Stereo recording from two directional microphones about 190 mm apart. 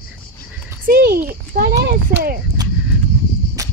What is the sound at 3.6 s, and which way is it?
Cricket, 20° right (ahead or behind).